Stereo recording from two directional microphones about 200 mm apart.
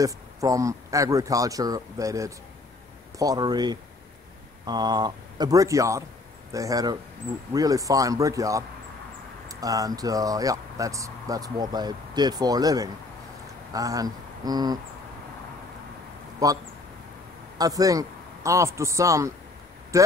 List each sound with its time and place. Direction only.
0.0 s speech: 15° right (ahead or behind)
16.4 s speech: 15° right (ahead or behind)